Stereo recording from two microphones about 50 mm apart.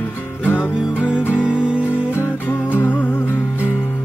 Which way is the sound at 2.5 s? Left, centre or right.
Left.